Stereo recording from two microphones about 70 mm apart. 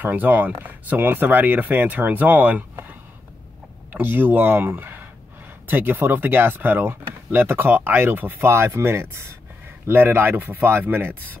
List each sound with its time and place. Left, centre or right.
0.0 s speech: right
3.9 s speech: right